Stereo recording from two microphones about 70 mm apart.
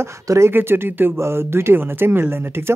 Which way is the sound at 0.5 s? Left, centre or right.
Right.